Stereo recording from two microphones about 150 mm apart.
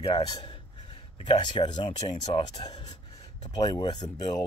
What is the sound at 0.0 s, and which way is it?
Speech, 40° left (ahead or behind).